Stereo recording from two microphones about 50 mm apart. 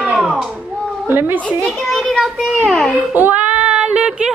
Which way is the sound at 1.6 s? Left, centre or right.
Centre.